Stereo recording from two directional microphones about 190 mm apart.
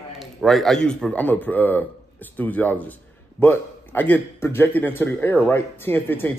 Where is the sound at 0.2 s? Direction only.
Centre (ahead or behind).